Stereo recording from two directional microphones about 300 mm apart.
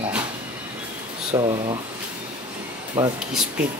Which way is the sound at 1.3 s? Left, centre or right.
Centre.